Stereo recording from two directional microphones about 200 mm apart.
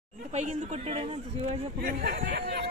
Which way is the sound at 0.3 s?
35° right (ahead or behind).